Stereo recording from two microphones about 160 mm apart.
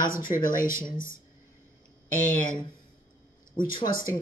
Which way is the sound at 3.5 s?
60° left (ahead or behind).